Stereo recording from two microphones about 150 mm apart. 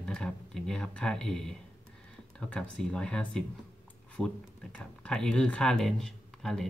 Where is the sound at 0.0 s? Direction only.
5° left (ahead or behind).